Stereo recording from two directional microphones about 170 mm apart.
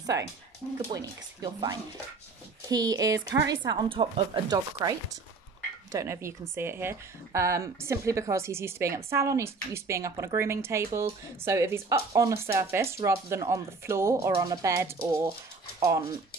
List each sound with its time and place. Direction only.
0.9 s a woman's voice: 20° right (ahead or behind)